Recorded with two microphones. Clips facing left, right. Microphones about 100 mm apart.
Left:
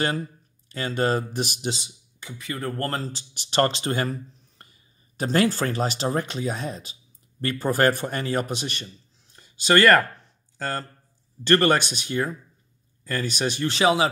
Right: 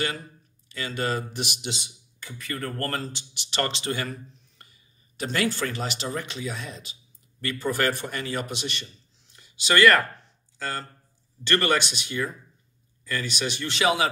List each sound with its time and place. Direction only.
0.7 s speech: 40° left (ahead or behind)
2.1 s speech: 20° left (ahead or behind); by 8.8 s 45° left (ahead or behind)
8.8 s a sound: 40° left (ahead or behind)
10.6 s speech: 40° left (ahead or behind)